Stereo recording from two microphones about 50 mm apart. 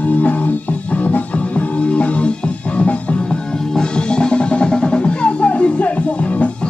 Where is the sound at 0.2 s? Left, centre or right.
Left.